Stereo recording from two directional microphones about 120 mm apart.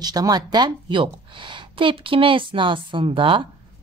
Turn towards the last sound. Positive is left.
turn(degrees=-45)  # may be behind; listen again after turning